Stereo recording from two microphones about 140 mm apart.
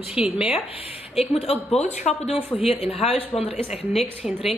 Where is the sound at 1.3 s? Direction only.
45° left (ahead or behind).